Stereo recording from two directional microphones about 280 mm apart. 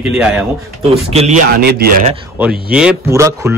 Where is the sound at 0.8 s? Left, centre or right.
Right.